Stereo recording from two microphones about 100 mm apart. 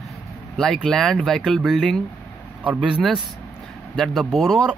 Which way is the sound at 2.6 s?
15° right (ahead or behind).